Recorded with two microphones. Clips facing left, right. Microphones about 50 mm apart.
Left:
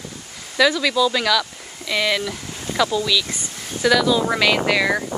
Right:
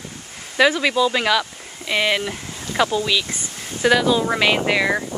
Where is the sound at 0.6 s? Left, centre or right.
Right.